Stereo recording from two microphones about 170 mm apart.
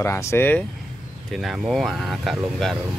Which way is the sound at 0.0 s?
15° left (ahead or behind).